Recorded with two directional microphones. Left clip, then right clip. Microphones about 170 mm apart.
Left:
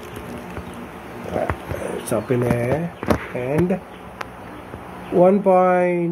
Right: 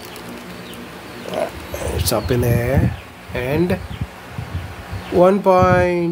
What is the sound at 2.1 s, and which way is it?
Speech, 15° right (ahead or behind).